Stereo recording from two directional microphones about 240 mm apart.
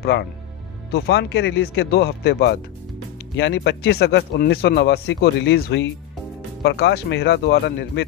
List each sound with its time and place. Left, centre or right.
0.0 s speech: left